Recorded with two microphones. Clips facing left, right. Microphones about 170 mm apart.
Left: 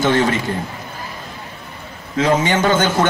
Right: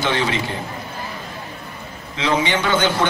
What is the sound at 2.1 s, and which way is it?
Speech, 45° left (ahead or behind).